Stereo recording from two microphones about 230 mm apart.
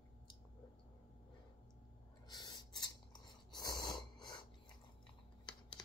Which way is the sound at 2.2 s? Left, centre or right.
Centre.